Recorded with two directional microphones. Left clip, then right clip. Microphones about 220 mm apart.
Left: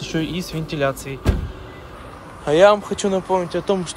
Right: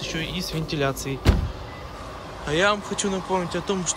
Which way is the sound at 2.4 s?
Centre (ahead or behind).